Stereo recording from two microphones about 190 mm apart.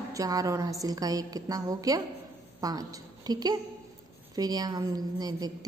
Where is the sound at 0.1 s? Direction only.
20° right (ahead or behind).